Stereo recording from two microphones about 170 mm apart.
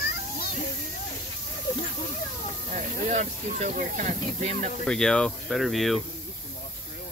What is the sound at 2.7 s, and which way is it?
Speech, 45° right (ahead or behind).